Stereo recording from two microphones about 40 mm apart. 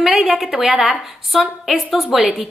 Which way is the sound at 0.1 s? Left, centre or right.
Centre.